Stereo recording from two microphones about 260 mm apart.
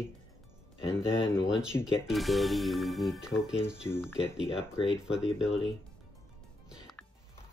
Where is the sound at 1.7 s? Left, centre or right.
Centre.